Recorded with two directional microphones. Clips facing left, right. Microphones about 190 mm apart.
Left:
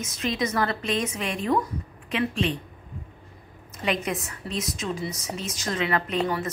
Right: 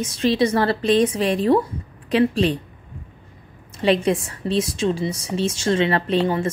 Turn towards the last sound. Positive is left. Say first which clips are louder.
# right 6 dB
turn(degrees=-30)  # may be behind; listen again after turning